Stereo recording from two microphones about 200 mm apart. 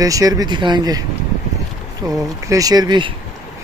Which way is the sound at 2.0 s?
15° right (ahead or behind).